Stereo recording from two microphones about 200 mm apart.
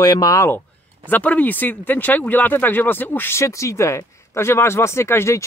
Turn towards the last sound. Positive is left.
turn(degrees=15)  # may be behind; listen again after turning